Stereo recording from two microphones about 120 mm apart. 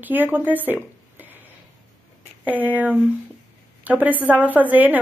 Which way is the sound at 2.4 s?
15° right (ahead or behind).